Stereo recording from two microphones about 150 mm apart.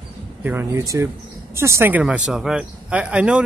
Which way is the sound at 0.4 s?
15° right (ahead or behind).